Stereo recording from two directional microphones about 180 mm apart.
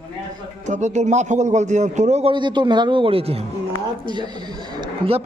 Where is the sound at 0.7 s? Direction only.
40° right (ahead or behind).